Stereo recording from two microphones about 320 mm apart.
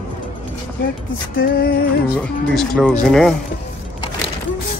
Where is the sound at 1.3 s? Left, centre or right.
Left.